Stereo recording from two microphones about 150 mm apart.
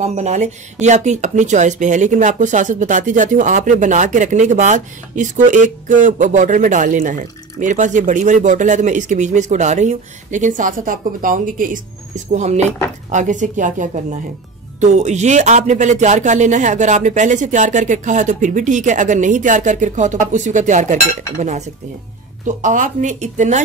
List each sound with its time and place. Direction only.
0.0 s speech: 50° right (ahead or behind); by 11.8 s 65° right (ahead or behind)
12.3 s speech: 50° right (ahead or behind)